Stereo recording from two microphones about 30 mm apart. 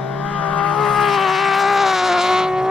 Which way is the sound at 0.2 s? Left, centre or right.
Left.